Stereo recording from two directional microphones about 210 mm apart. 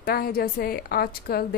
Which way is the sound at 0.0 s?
45° left (ahead or behind).